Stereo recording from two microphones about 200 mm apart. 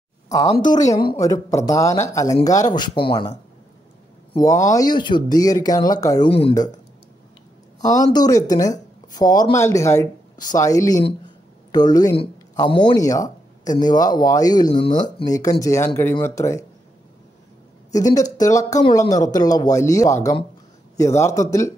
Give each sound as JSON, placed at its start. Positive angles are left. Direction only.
{"t": 0.3, "sound": "speech", "side_deg": 20}
{"t": 8.0, "sound": "speech", "side_deg": 20}
{"t": 18.1, "sound": "speech", "side_deg": 15}